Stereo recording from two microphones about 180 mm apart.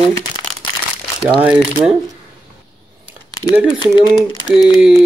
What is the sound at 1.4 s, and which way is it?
Speech, 10° right (ahead or behind).